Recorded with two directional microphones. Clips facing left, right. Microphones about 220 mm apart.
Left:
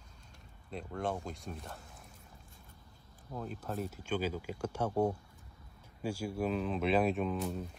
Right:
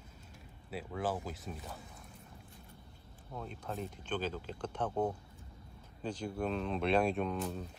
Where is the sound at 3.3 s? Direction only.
5° left (ahead or behind).